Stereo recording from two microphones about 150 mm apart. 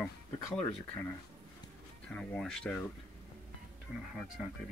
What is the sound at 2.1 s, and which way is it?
Speech, 5° left (ahead or behind).